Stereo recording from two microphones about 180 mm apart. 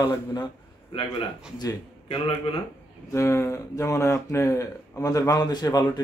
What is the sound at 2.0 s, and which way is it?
Speech, 30° left (ahead or behind).